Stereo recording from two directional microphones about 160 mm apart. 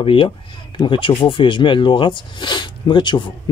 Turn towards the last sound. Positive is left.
turn(degrees=30)  # may be behind; listen again after turning